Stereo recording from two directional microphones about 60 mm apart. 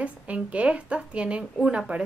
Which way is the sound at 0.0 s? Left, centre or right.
Right.